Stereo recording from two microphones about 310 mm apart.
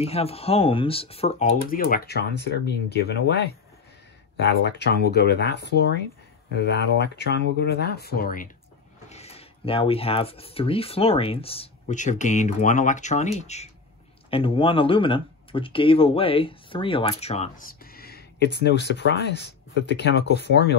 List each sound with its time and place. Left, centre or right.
0.0 s speech: centre